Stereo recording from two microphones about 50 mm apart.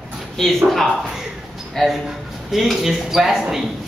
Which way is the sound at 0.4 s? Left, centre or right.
Centre.